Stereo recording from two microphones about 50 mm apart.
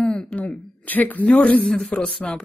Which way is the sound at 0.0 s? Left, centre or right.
Centre.